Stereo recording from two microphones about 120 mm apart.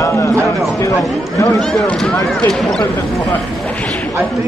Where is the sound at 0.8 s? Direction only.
25° left (ahead or behind).